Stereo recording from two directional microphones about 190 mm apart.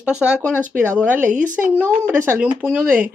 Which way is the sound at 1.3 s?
45° right (ahead or behind).